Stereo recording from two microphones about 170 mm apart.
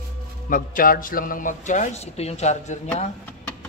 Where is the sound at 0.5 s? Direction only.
55° left (ahead or behind).